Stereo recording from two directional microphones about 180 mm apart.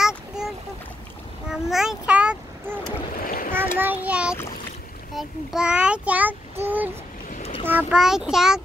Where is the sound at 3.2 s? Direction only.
55° left (ahead or behind).